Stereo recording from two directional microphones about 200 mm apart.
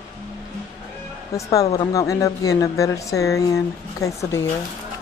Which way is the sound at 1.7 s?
15° left (ahead or behind).